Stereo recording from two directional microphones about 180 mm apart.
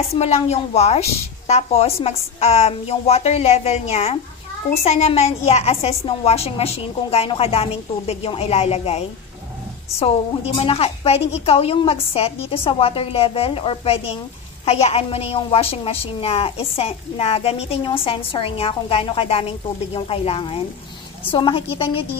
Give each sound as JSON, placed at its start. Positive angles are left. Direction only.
{"t": 0.1, "sound": "a woman's voice", "side_deg": 35}